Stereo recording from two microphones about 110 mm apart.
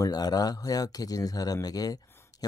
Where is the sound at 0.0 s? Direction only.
35° left (ahead or behind).